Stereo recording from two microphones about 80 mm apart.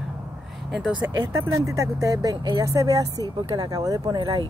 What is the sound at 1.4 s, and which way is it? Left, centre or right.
Speech, right.